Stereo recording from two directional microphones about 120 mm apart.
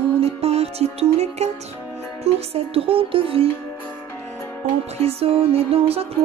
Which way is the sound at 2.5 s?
50° right (ahead or behind).